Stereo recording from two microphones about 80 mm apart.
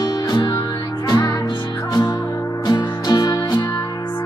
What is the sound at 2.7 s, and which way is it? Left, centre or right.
Music, left.